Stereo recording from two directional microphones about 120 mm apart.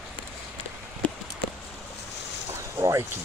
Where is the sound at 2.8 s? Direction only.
25° right (ahead or behind).